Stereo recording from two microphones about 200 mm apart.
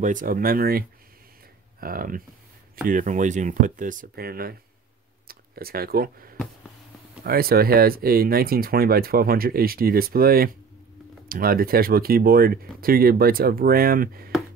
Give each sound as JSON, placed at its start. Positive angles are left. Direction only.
{"t": 0.0, "sound": "speech", "side_deg": -40}